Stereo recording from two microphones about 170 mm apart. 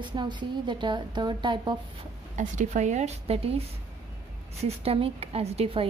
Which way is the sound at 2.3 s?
45° right (ahead or behind).